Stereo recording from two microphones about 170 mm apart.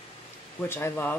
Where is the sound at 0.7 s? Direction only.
10° left (ahead or behind).